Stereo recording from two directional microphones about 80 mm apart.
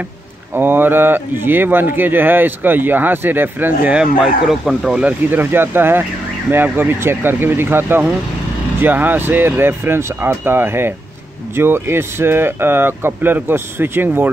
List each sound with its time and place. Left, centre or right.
0.6 s speech: right; by 5.1 s centre
5.3 s speech: right